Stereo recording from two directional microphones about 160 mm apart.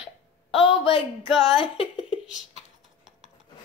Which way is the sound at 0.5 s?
35° left (ahead or behind).